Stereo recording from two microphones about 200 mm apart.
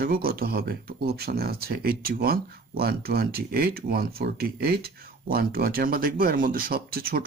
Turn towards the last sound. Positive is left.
turn(degrees=-50)  # may be behind; listen again after turning